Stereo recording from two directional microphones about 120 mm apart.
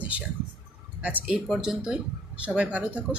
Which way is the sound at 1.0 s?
10° right (ahead or behind).